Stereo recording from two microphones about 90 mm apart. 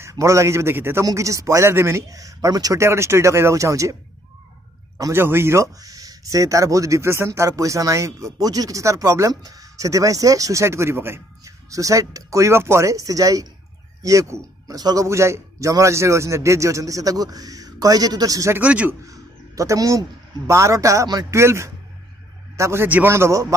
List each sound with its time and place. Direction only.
0.0 s speech: 35° right (ahead or behind)
5.1 s speech: 25° right (ahead or behind)
5.8 s a man's voice: 45° right (ahead or behind)
15.0 s speech: 30° right (ahead or behind)
18.6 s a man's voice: 15° right (ahead or behind)
19.0 s a sound: 40° right (ahead or behind)
20.4 s speech: 35° right (ahead or behind)
21.3 s speech: 30° right (ahead or behind)
22.8 s speech: 20° right (ahead or behind)
23.1 s speech: 30° right (ahead or behind)